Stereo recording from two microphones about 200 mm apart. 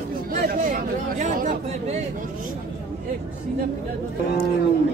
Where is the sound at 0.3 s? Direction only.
45° right (ahead or behind).